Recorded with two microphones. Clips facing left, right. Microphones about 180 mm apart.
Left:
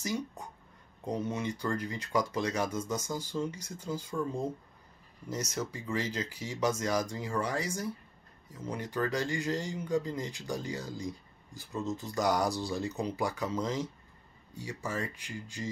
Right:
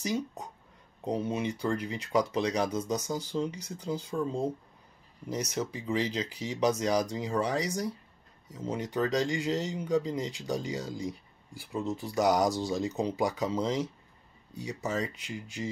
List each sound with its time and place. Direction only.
1.0 s speech: 15° right (ahead or behind)